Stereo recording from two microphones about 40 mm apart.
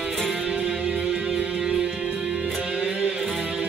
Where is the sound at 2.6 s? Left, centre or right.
Right.